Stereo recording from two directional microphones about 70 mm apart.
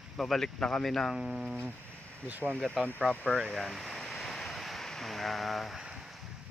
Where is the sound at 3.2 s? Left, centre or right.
Centre.